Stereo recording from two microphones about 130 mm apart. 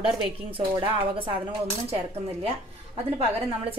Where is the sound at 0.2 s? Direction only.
40° right (ahead or behind).